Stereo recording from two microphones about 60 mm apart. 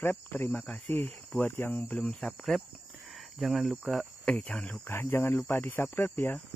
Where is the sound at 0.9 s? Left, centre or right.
Left.